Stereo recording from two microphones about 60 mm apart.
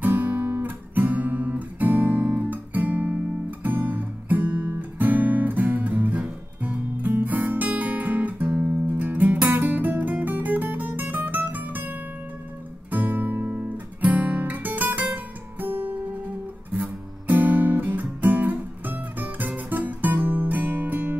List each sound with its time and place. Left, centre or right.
0.0 s guitar: right
8.6 s music: right
9.5 s guitar: right